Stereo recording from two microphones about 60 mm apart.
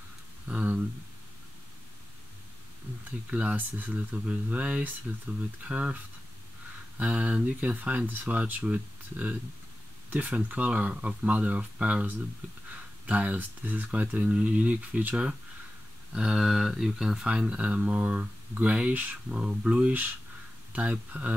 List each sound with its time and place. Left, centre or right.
0.5 s a sound: right
3.1 s speech: right
7.0 s speech: right
16.1 s speech: centre
17.3 s speech: centre